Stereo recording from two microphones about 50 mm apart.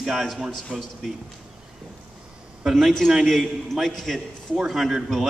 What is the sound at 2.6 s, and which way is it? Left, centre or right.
A man's voice, centre.